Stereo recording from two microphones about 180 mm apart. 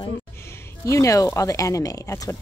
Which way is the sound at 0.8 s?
15° left (ahead or behind).